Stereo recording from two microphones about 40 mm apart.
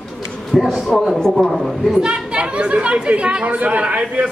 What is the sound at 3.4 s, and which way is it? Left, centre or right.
Speech, right.